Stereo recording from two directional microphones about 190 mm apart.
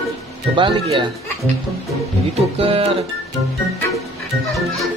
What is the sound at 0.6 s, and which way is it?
Speech, 25° right (ahead or behind).